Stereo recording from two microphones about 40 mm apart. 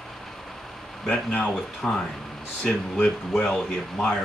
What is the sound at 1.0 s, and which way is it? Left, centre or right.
Speech, left.